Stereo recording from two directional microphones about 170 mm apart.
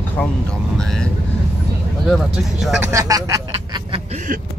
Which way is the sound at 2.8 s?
20° right (ahead or behind).